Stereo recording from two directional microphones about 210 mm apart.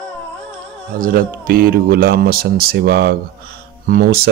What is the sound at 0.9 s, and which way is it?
Speech, 40° right (ahead or behind).